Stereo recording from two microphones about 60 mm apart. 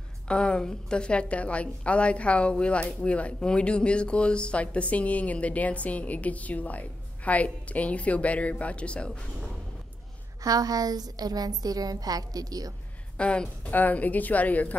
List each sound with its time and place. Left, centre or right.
0.3 s a woman's voice: centre
10.4 s a woman's voice: right
13.2 s a woman's voice: centre